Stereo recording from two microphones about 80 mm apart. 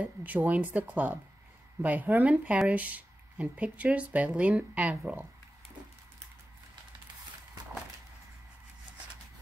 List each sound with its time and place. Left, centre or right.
0.0 s speech: right